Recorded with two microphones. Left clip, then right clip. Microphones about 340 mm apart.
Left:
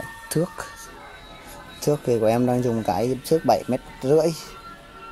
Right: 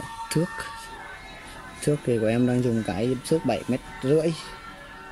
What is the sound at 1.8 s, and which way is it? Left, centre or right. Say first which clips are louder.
Speech: left 4 dB; left.